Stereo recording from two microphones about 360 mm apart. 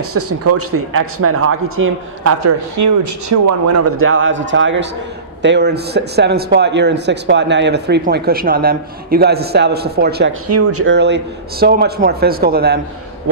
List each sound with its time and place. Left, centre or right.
0.0 s a man's voice: right
10.5 s a man's voice: right